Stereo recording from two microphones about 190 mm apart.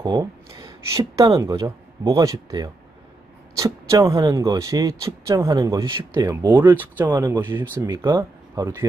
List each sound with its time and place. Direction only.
0.0 s speech: 20° right (ahead or behind)
6.5 s speech: 10° right (ahead or behind)